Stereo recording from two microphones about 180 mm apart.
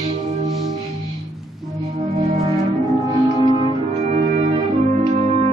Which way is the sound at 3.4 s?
25° left (ahead or behind).